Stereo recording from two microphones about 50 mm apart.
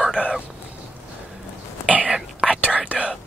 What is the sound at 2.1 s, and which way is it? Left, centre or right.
Whispering, centre.